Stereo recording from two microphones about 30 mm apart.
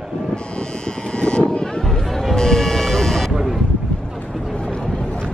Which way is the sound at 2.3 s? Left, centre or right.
Centre.